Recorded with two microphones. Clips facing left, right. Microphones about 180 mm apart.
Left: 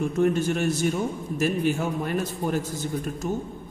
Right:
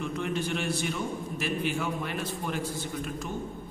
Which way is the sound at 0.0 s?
45° left (ahead or behind).